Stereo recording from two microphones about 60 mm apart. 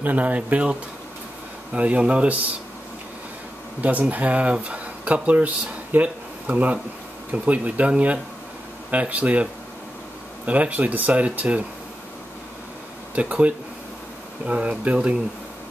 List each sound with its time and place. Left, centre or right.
0.0 s speech: right
3.8 s speech: right
13.1 s speech: right